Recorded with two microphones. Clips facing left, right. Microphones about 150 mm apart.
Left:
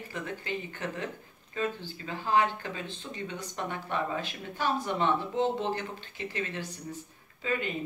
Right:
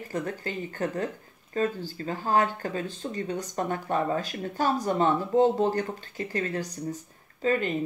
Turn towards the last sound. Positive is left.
turn(degrees=-40)  # may be behind; listen again after turning